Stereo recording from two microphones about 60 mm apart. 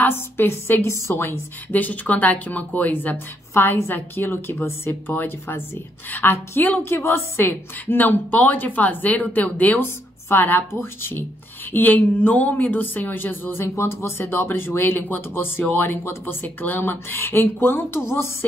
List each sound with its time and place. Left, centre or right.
0.0 s speech: left
1.7 s speech: left
3.5 s speech: left
6.9 s a woman's voice: left
7.8 s speech: left
14.2 s speech: left